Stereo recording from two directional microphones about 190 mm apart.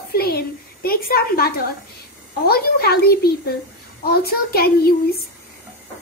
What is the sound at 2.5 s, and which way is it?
A child's voice, 55° left (ahead or behind).